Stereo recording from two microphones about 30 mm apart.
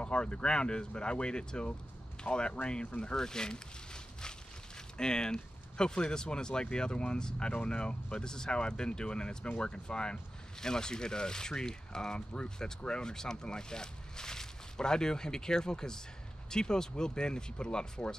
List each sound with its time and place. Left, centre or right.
0.0 s speech: left
3.2 s speech: left